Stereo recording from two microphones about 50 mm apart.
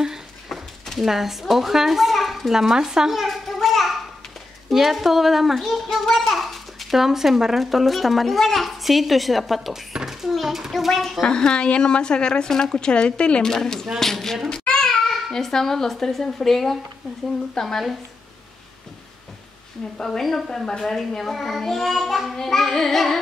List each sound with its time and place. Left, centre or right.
0.5 s a child's voice: centre
11.2 s speech: centre
14.5 s child singing: centre
15.3 s speech: centre
20.0 s a child's voice: centre